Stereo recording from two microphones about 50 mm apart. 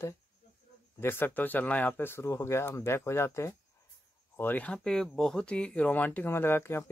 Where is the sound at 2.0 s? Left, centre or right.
Left.